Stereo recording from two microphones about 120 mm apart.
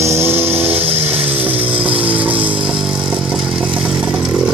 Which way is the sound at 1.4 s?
15° right (ahead or behind).